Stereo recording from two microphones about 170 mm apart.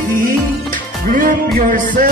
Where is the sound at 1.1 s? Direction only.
55° right (ahead or behind).